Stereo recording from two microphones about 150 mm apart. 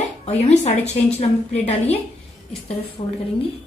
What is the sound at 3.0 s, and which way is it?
Speech, 35° left (ahead or behind).